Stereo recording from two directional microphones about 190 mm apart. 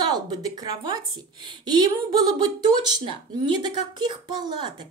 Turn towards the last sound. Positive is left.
turn(degrees=-25)  # may be behind; listen again after turning